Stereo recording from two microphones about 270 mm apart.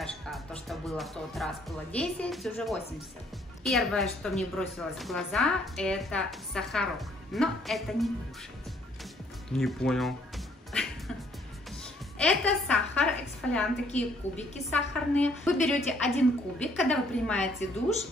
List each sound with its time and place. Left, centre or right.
0.0 s a woman's voice: centre
9.5 s music: centre
12.2 s a sound: centre
14.2 s a woman's voice: left
15.1 s a woman's voice: centre